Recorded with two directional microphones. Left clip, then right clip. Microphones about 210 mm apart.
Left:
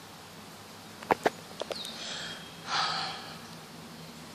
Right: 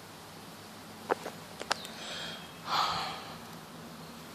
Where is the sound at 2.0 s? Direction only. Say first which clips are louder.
Left 2 dB; 10° right (ahead or behind).